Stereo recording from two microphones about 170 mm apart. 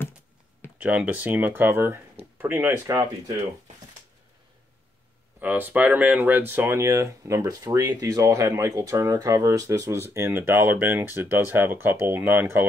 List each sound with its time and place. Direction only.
0.7 s speech: 10° right (ahead or behind)
5.4 s speech: 10° right (ahead or behind)